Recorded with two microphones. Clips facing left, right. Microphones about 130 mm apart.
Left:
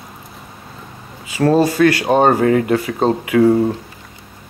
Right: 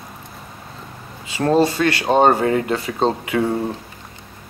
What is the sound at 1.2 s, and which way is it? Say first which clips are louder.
Speech: left 2 dB; 25° right (ahead or behind).